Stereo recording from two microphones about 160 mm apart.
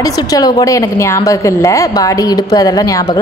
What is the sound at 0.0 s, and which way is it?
A woman's voice, 25° left (ahead or behind).